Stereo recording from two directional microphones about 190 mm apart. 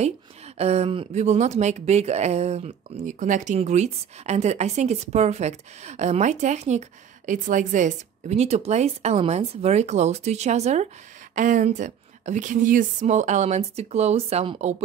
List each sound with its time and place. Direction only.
0.6 s speech: 35° right (ahead or behind)